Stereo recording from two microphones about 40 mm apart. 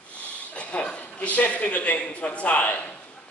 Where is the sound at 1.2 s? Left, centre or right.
Left.